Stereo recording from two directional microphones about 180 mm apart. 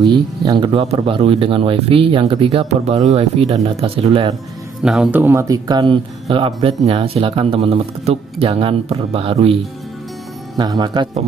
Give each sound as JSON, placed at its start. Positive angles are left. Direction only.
{"t": 0.0, "sound": "speech", "side_deg": -25}
{"t": 4.8, "sound": "speech", "side_deg": -5}
{"t": 10.6, "sound": "speech", "side_deg": -25}